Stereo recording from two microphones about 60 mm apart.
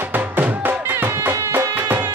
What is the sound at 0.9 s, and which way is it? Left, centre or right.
Music, right.